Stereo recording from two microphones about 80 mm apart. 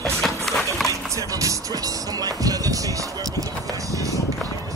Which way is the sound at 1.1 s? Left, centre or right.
Right.